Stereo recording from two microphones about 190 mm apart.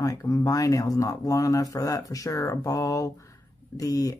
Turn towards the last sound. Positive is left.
turn(degrees=20)  # may be behind; listen again after turning